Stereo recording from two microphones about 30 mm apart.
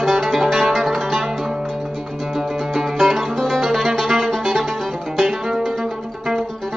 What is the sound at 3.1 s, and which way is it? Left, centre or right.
Music, centre.